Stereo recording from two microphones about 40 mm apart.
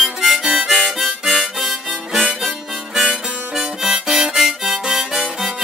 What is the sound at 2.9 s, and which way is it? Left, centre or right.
Harmonica, centre.